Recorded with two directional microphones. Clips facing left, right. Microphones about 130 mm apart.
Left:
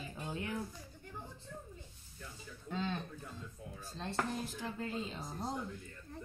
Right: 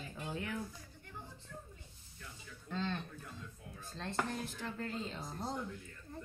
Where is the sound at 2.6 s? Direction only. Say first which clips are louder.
Left 1 dB; 10° left (ahead or behind).